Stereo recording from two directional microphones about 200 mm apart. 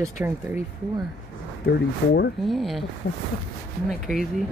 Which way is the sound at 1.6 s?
55° left (ahead or behind).